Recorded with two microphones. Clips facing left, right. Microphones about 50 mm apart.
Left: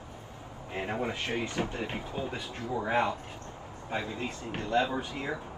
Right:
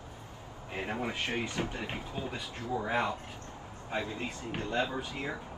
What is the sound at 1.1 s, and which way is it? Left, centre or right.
Speech, right.